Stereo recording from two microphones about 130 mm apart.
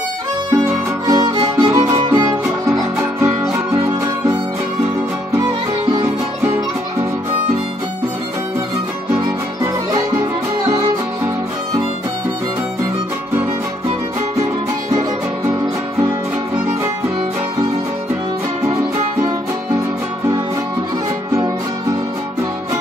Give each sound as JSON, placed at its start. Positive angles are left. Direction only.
{"t": 0.5, "sound": "music", "side_deg": -25}
{"t": 3.7, "sound": "music", "side_deg": -30}
{"t": 9.6, "sound": "music", "side_deg": -25}
{"t": 14.4, "sound": "music", "side_deg": -25}
{"t": 18.7, "sound": "music", "side_deg": -45}